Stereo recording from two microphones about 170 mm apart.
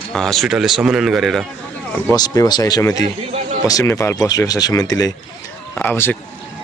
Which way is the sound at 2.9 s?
40° right (ahead or behind).